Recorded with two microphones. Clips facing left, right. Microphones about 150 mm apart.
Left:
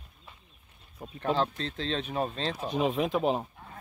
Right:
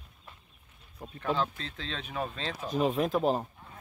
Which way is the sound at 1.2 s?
30° left (ahead or behind).